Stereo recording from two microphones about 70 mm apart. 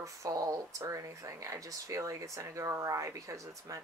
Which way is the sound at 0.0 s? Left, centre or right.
Right.